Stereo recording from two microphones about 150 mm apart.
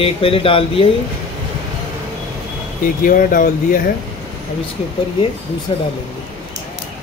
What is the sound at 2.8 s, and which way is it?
Speech, 65° left (ahead or behind).